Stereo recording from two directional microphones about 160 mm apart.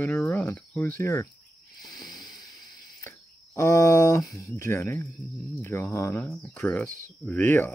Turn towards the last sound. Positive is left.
turn(degrees=10)  # may be behind; listen again after turning